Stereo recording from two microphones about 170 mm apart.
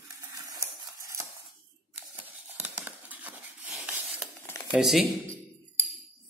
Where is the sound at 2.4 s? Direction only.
10° right (ahead or behind).